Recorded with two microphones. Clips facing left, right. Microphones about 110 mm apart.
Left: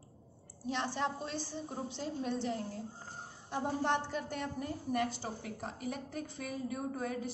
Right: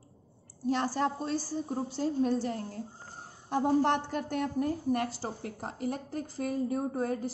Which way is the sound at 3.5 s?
55° right (ahead or behind).